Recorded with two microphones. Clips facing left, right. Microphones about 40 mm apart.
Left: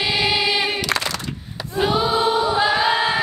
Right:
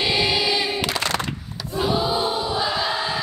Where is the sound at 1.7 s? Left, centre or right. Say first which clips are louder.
Left 3 dB; left.